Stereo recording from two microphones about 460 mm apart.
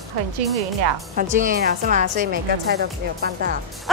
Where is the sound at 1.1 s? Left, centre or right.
Centre.